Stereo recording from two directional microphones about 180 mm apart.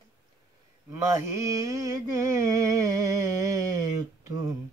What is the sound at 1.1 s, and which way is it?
Mantra, 20° right (ahead or behind).